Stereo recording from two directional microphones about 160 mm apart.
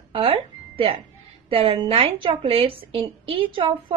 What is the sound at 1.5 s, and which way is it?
A woman's voice, 35° right (ahead or behind).